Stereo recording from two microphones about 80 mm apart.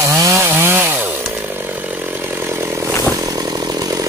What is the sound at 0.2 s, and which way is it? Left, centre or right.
Chainsaw, right.